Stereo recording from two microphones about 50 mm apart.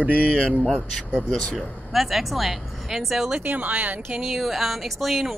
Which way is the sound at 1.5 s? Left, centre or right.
Centre.